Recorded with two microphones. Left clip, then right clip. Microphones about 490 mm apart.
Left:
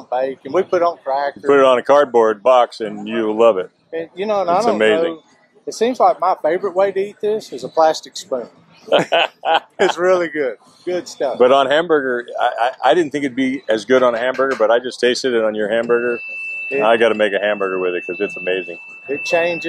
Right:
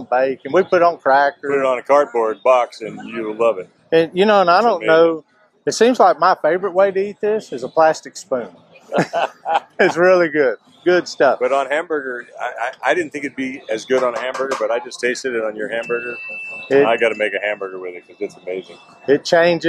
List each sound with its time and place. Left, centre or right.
0.1 s speech: right
1.0 s speech: right
1.5 s speech: left
4.2 s speech: right
5.7 s speech: right
9.1 s speech: left
9.8 s speech: right
11.3 s speech: left
19.0 s speech: right